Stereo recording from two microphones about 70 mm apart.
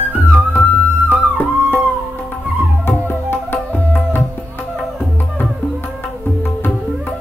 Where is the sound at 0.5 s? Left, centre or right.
Left.